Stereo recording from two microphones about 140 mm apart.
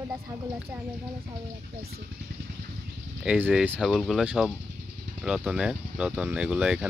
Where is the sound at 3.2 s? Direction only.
5° right (ahead or behind).